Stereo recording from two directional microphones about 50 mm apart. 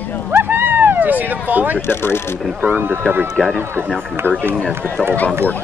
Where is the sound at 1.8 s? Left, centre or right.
Left.